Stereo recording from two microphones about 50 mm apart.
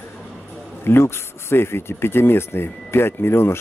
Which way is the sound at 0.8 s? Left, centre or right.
Left.